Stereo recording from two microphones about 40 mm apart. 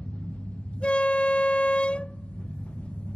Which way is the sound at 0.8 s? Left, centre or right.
Left.